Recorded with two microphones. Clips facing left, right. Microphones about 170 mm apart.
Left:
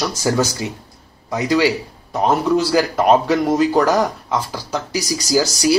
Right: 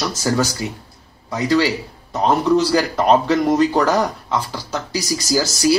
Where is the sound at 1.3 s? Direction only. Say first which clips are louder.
Left 1 dB; 10° left (ahead or behind).